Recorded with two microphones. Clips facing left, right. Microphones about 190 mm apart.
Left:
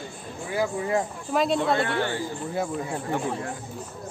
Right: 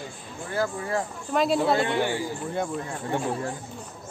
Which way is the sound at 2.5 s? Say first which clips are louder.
Left 2 dB; 5° left (ahead or behind).